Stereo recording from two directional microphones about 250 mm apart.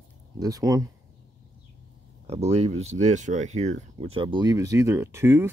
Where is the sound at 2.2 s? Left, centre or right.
Right.